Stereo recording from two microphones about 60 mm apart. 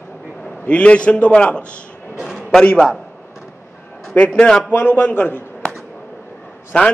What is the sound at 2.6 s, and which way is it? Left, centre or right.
Speech, centre.